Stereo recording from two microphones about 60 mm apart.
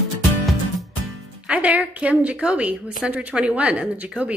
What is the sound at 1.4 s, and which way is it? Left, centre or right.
A woman's voice, centre.